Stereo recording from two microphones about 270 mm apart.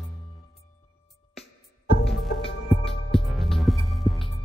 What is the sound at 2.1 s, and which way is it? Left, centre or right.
Music, centre.